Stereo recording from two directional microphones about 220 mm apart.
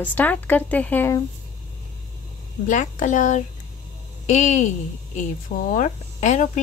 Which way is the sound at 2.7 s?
35° left (ahead or behind).